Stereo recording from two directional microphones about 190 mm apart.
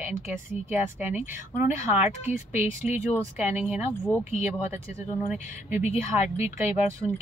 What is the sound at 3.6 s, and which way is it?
Speech, 10° right (ahead or behind).